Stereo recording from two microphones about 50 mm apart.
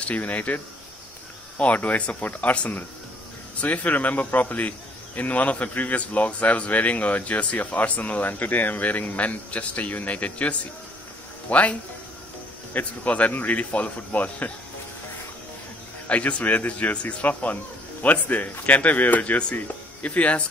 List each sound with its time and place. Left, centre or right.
0.0 s a man's voice: left
1.6 s speech: left
2.2 s a man's voice: left
3.6 s a man's voice: left
12.7 s a man's voice: left
16.1 s a man's voice: left